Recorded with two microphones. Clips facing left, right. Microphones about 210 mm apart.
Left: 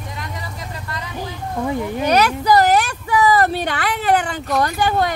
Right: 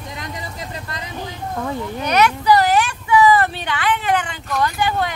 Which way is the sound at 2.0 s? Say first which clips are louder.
Even; 35° left (ahead or behind).